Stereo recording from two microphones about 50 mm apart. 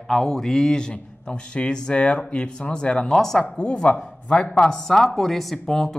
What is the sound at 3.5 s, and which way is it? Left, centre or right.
Speech, left.